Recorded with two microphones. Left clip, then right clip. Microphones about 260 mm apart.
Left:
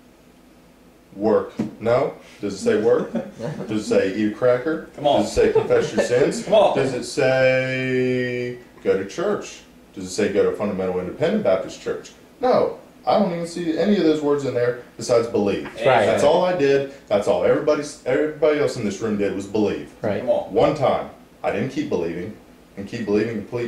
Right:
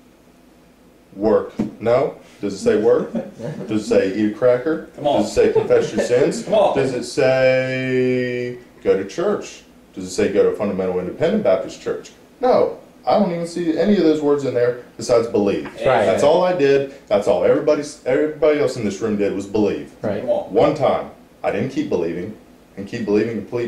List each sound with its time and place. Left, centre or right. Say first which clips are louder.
1.2 s speech: right 2 dB; centre